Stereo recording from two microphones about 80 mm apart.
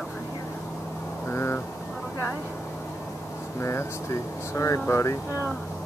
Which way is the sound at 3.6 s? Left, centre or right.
Left.